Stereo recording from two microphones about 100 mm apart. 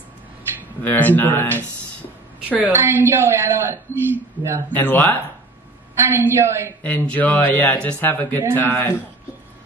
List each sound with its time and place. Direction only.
0.8 s speech: 15° left (ahead or behind)
2.5 s a woman's voice: 20° right (ahead or behind)
4.7 s speech: 15° left (ahead or behind)
5.9 s a woman's voice: 25° right (ahead or behind)
6.8 s speech: 15° left (ahead or behind)